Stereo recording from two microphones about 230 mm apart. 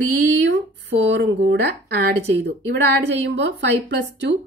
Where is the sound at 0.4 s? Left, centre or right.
Right.